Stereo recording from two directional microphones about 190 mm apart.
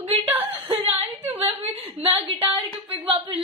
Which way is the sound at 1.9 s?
30° right (ahead or behind).